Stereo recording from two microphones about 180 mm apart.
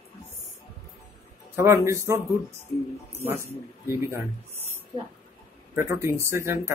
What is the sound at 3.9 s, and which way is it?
Speech, 15° right (ahead or behind).